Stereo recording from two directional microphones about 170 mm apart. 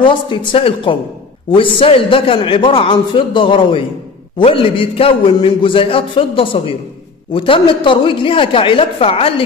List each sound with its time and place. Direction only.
0.0 s a man's voice: 30° left (ahead or behind)